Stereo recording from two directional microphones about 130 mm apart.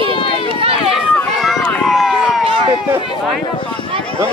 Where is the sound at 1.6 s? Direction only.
15° left (ahead or behind).